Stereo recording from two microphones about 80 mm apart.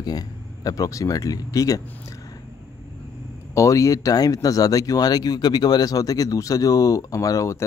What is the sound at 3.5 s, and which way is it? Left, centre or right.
Speech, left.